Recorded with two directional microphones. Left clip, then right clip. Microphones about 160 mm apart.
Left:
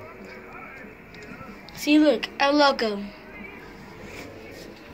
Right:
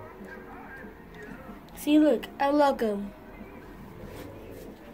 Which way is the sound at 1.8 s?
5° right (ahead or behind).